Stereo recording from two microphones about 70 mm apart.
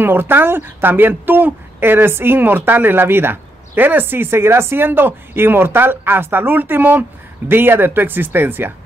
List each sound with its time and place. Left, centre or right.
0.0 s speech: right